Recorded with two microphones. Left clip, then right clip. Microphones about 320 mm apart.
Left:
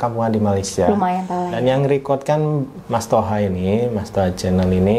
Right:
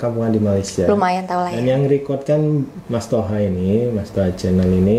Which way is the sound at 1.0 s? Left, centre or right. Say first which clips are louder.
Right 2 dB; right.